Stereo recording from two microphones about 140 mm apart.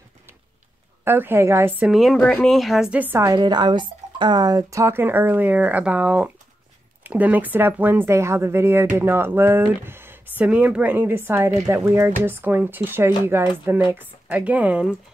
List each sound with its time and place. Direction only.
1.0 s speech: 15° right (ahead or behind)
1.9 s a woman's voice: centre (ahead or behind); by 3.3 s 15° right (ahead or behind)
3.3 s speech: 30° right (ahead or behind); by 14.9 s 10° right (ahead or behind)